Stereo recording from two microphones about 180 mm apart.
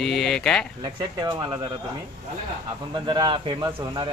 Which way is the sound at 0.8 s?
20° right (ahead or behind).